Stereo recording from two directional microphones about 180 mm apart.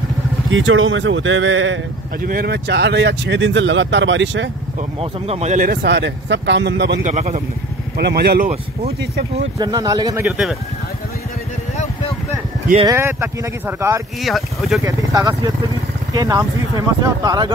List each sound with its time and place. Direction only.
0.5 s speech: 90° right
2.2 s speech: 55° right (ahead or behind); by 4.5 s 90° right
5.0 s speech: 35° right (ahead or behind); by 7.0 s 70° right (ahead or behind)
7.0 s a man's voice: 40° right (ahead or behind)
8.0 s speech: 60° right (ahead or behind)
9.6 s speech: 20° right (ahead or behind)
10.2 s speech: 5° right (ahead or behind)
12.8 s speech: 15° right (ahead or behind)
14.2 s speech: centre (ahead or behind)
14.8 s speech: 20° right (ahead or behind)